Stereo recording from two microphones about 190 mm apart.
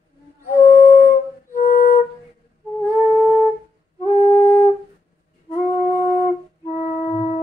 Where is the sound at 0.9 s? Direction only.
45° left (ahead or behind).